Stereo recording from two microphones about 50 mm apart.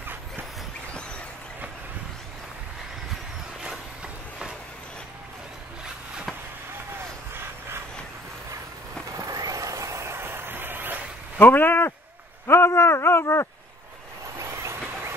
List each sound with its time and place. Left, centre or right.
9.1 s vehicle: right
10.1 s vehicle: right
11.3 s speech: left
12.4 s a man's voice: left
14.4 s vehicle: right